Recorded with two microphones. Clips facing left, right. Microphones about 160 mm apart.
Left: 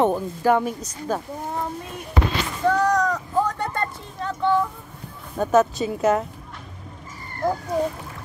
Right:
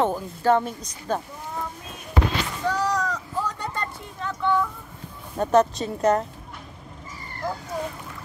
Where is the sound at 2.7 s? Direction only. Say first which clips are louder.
Left 6 dB; 55° left (ahead or behind).